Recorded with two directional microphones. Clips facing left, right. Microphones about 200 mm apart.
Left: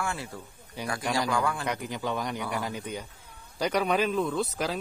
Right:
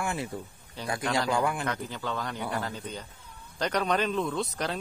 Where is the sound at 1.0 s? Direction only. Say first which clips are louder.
Even; 15° left (ahead or behind).